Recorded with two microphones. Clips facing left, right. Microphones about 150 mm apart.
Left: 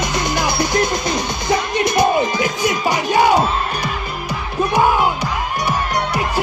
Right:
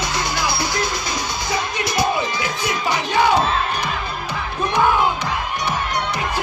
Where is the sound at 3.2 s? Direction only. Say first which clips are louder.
Left 2 dB; 10° left (ahead or behind).